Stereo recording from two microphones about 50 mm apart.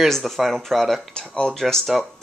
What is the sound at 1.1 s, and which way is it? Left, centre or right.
Speech, centre.